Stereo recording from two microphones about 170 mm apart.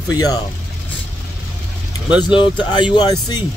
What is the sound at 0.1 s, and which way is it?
Speech, 20° left (ahead or behind).